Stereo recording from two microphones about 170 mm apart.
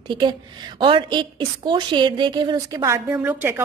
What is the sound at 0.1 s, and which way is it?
A woman's voice, 25° right (ahead or behind).